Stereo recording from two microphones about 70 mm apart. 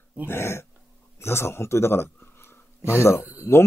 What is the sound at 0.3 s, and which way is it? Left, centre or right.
Speech, left.